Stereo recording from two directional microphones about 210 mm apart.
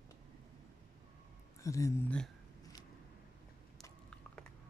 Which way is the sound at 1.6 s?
15° left (ahead or behind).